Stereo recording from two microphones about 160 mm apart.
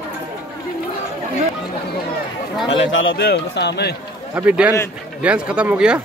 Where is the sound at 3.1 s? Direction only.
85° left.